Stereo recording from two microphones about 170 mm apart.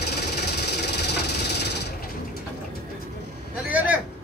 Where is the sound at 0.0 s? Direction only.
75° left (ahead or behind).